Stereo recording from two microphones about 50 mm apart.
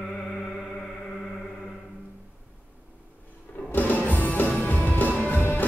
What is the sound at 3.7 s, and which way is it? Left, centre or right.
Music, left.